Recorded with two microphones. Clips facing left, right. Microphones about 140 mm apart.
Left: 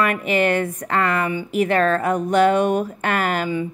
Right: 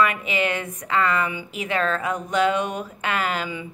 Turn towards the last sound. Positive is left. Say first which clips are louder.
# left 5 dB
turn(degrees=50)  # may be behind; listen again after turning